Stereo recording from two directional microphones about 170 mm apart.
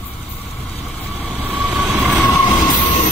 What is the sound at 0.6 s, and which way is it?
Vehicle, 5° left (ahead or behind).